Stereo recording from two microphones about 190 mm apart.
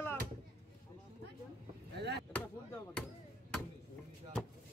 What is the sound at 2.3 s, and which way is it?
Speech, 10° left (ahead or behind).